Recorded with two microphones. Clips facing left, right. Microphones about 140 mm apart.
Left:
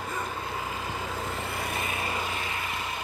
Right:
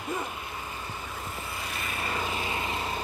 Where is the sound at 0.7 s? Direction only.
90° left; by 1.9 s 55° left (ahead or behind).